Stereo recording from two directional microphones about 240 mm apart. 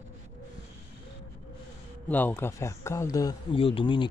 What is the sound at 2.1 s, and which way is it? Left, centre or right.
Speech, centre.